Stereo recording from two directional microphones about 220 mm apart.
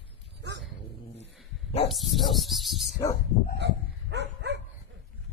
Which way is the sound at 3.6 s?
50° right (ahead or behind).